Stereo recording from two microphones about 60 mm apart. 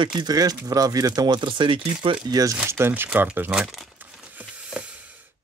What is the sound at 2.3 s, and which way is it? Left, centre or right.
Speech, right.